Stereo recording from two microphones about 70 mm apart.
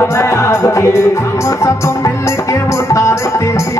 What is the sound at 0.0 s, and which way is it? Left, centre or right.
Music, left.